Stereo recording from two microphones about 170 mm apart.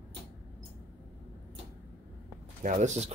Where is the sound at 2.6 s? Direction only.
45° right (ahead or behind).